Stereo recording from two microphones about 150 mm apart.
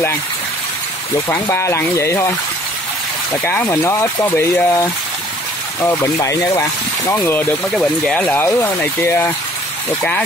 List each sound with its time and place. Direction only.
1.3 s speech: 20° left (ahead or behind)
3.7 s speech: 20° left (ahead or behind)